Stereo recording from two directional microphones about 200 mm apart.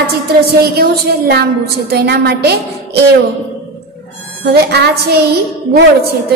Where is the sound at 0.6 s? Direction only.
50° right (ahead or behind).